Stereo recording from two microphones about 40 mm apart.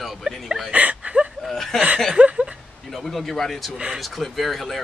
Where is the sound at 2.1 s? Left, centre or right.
Right.